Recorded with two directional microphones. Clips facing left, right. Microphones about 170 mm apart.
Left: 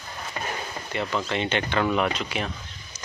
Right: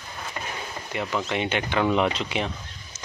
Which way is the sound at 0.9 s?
10° right (ahead or behind).